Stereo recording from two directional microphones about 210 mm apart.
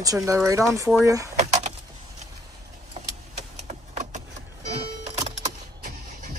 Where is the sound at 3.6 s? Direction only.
35° right (ahead or behind).